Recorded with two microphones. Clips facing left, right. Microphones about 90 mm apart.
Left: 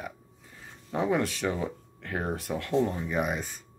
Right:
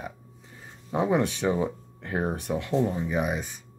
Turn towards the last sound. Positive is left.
turn(degrees=-10)  # may be behind; listen again after turning